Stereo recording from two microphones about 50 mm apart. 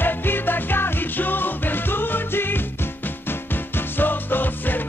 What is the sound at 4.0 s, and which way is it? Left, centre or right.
Music, left.